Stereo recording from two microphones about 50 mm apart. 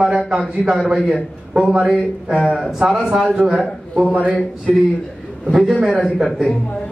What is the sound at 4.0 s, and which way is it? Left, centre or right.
Speech, right.